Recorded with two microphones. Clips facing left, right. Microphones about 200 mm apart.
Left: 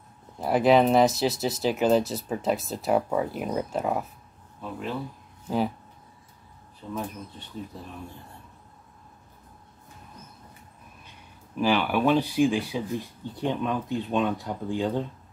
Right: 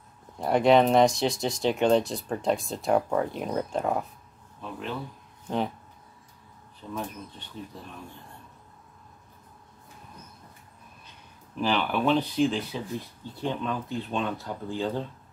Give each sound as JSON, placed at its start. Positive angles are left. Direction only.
{"t": 0.4, "sound": "speech", "side_deg": 5}
{"t": 6.8, "sound": "speech", "side_deg": 10}
{"t": 11.5, "sound": "speech", "side_deg": 10}